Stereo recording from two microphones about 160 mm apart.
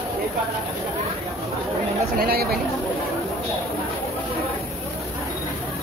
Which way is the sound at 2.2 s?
70° right (ahead or behind).